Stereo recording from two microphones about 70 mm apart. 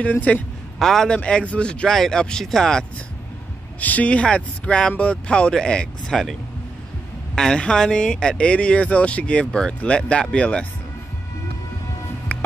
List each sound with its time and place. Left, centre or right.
0.0 s a man's voice: left
0.7 s a man's voice: centre
1.1 s speech: centre
3.8 s speech: left; by 6.3 s centre
7.3 s speech: centre